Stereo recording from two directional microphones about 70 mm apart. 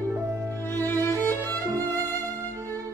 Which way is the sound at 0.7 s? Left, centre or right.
Left.